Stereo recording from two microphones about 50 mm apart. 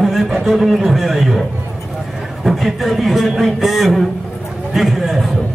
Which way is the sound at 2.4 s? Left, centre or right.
Centre.